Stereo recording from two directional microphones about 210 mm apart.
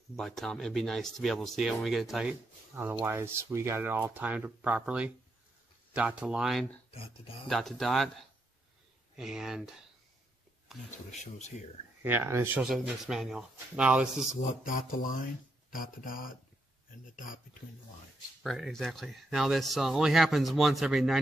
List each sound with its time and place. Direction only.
0.1 s speech: centre (ahead or behind)
11.1 s a sound: 35° left (ahead or behind)
12.0 s speech: 10° right (ahead or behind)
14.5 s a sound: 40° left (ahead or behind)
15.7 s speech: 40° left (ahead or behind)
18.4 s speech: centre (ahead or behind)